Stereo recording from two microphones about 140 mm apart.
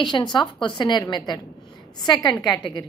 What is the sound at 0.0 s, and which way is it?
A woman's voice, 35° left (ahead or behind).